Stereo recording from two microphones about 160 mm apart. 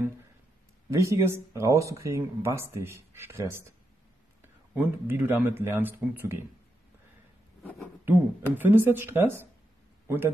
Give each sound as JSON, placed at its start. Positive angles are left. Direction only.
{"t": 0.8, "sound": "speech", "side_deg": -20}
{"t": 4.7, "sound": "speech", "side_deg": -10}
{"t": 8.0, "sound": "a man's voice", "side_deg": -15}